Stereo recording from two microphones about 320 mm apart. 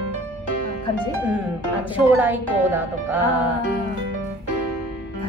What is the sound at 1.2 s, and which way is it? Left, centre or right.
A woman's voice, centre.